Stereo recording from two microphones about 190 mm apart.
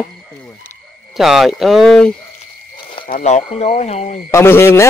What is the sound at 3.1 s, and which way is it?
Speech, 35° left (ahead or behind).